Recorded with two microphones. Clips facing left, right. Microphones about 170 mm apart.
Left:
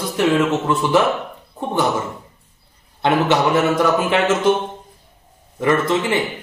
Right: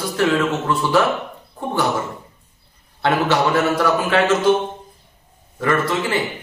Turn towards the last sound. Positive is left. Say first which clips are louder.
# left 2 dB
turn(degrees=20)  # may be behind; listen again after turning